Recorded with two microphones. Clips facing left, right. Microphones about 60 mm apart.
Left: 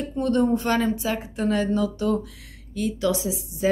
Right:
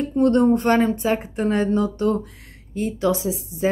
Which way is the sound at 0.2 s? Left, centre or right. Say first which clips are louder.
Right 5 dB; right.